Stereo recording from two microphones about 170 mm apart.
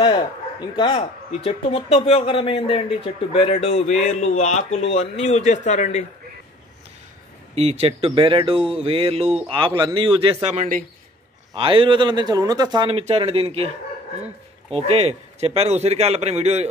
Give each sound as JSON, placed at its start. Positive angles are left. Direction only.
{"t": 0.0, "sound": "a man's voice", "side_deg": 25}
{"t": 7.5, "sound": "a man's voice", "side_deg": -40}
{"t": 11.5, "sound": "a man's voice", "side_deg": -30}